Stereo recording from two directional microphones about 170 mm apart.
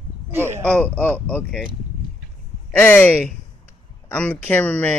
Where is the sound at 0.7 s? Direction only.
5° left (ahead or behind).